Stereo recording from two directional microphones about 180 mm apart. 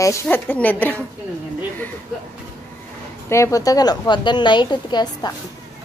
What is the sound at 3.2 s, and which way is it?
A woman's voice, 15° left (ahead or behind).